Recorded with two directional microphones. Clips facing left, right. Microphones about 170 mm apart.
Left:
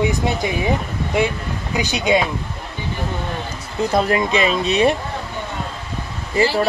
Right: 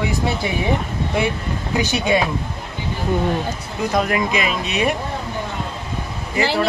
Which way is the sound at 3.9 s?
30° left (ahead or behind).